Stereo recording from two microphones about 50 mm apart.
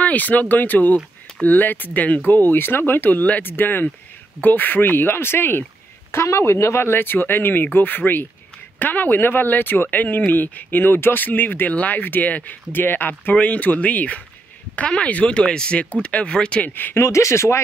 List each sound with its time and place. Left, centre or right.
0.0 s speech: left
6.1 s speech: left
13.3 s speech: left
16.6 s speech: left
17.0 s speech: left